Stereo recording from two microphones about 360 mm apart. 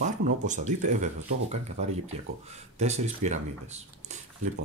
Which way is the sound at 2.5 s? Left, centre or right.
Centre.